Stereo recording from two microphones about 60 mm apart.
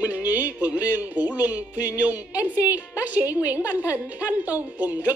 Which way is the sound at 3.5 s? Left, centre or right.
Right.